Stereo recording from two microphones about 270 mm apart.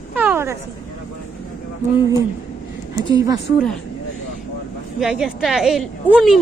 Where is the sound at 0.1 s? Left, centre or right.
Centre.